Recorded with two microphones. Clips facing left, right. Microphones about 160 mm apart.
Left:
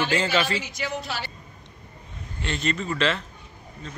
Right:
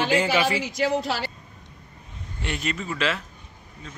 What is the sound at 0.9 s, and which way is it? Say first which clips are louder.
Speech: right 6 dB; 90° right.